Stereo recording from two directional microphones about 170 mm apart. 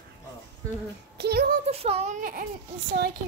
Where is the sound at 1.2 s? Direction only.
70° right (ahead or behind).